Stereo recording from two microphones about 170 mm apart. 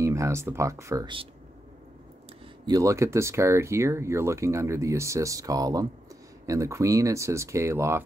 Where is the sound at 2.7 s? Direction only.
20° right (ahead or behind).